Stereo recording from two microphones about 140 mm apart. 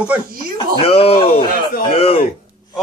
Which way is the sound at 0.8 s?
45° left (ahead or behind).